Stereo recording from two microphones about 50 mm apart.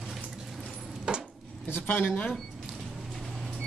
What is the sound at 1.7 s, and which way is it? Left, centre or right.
Speech, left.